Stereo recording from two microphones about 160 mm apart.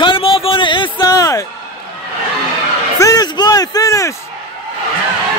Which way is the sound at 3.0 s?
20° left (ahead or behind).